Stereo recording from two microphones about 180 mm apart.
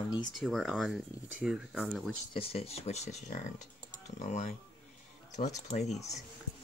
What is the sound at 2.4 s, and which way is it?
Speech, 35° left (ahead or behind).